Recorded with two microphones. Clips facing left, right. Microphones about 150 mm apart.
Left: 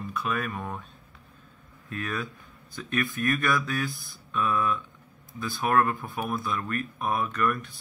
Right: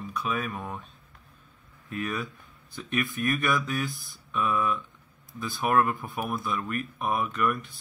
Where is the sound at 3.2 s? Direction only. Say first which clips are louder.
Even; 20° right (ahead or behind).